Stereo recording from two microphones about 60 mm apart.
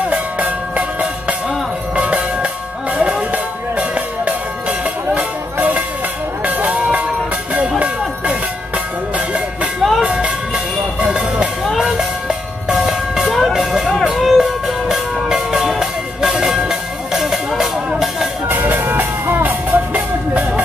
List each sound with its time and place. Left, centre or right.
0.1 s bell: right
2.0 s music: right
6.4 s a sound: right
7.8 s music: right
9.8 s music: centre
10.0 s vehicle: centre
14.0 s music: centre
18.5 s music: right